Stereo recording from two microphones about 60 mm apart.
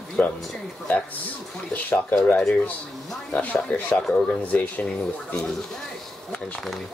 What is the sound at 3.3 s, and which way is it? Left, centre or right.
Speech, left.